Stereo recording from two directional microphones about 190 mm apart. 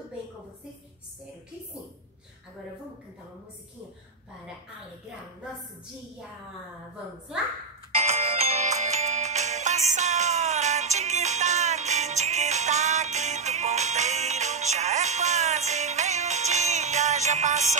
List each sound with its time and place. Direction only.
7.9 s music: 35° right (ahead or behind)